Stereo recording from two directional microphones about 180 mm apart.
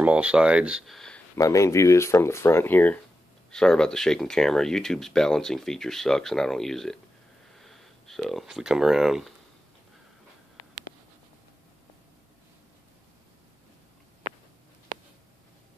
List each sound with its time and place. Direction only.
0.0 s speech: 5° right (ahead or behind)
1.3 s speech: 15° left (ahead or behind); by 9.3 s centre (ahead or behind)